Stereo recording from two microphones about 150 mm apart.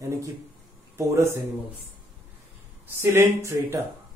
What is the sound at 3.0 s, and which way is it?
Speech, 15° right (ahead or behind).